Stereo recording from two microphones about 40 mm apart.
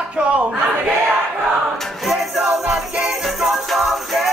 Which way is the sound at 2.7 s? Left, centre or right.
Right.